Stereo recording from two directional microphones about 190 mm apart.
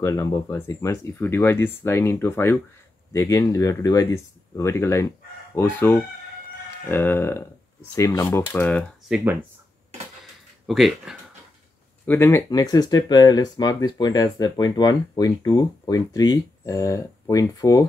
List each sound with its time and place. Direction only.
0.0 s speech: 15° left (ahead or behind)
10.7 s speech: centre (ahead or behind)
12.1 s speech: 10° left (ahead or behind)